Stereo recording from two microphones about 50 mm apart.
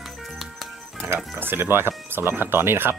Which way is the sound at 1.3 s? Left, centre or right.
Right.